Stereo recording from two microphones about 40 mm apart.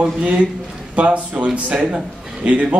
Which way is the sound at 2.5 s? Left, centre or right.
Right.